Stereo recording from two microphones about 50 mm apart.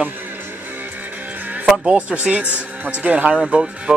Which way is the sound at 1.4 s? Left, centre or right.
Right.